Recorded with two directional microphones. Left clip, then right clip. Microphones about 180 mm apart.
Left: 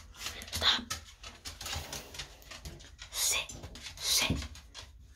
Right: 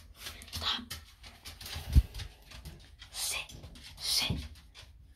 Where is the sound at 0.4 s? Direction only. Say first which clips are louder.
Left 6 dB; 30° left (ahead or behind).